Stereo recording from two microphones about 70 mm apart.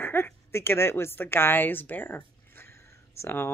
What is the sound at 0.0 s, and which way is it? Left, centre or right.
A woman's voice, left.